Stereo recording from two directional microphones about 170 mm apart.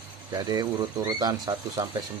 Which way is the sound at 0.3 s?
25° right (ahead or behind).